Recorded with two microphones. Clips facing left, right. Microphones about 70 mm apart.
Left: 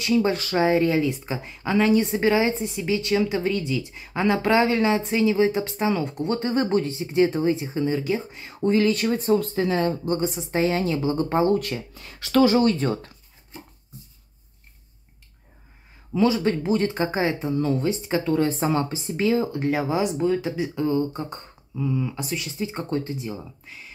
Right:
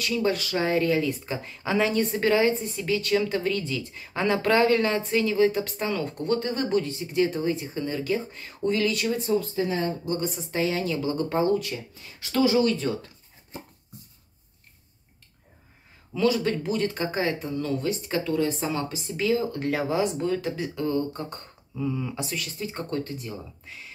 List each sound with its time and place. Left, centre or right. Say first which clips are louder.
0.0 s speech: left 4 dB; left
0.6 s a woman's voice: left 5 dB; centre
2.0 s a woman's voice: left 2 dB; centre
8.6 s speech: left 4 dB; left
10.2 s speech: left 4 dB; left
10.6 s speech: left 3 dB; left
11.5 s speech: left 2 dB; left
11.9 s speech: left 11 dB; left
12.4 s speech: left 3 dB; left
16.2 s speech: left 3 dB; left
18.3 s speech: left 5 dB; left
19.6 s a woman's voice: left 2 dB; centre
21.7 s speech: left 3 dB; centre
22.3 s speech: left 4 dB; centre